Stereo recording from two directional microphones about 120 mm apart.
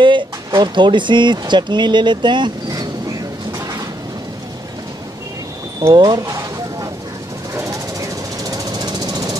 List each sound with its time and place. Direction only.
0.0 s speech: 40° right (ahead or behind)
5.9 s a sound: 35° right (ahead or behind)
8.5 s jackhammer: 30° right (ahead or behind)